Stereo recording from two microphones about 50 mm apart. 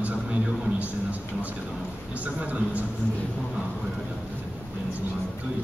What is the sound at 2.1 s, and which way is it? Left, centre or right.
Speech, right.